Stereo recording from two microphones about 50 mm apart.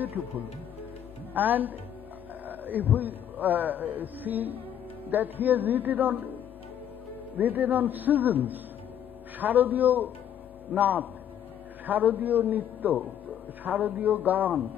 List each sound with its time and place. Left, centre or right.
0.0 s a man's voice: right